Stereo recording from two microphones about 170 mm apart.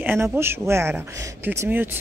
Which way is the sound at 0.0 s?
10° right (ahead or behind).